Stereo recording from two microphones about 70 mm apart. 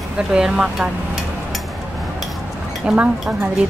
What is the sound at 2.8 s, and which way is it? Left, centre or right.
Speech, right.